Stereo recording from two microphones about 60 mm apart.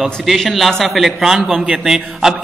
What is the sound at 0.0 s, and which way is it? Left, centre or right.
A man's voice, centre.